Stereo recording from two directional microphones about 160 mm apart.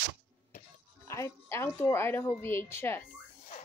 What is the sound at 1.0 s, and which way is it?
Speech, 15° left (ahead or behind).